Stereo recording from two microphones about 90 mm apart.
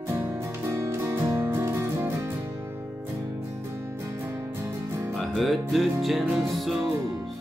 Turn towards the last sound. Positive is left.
turn(degrees=0)  # may be behind; listen again after turning